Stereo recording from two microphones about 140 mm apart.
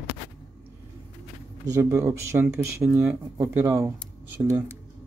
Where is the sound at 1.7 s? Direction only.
20° right (ahead or behind).